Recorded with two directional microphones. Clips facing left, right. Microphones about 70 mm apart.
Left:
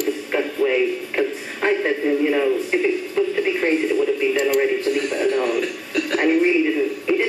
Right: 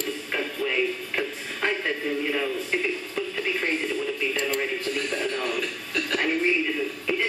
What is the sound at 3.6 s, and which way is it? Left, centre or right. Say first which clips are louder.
Speech: left 9 dB; left.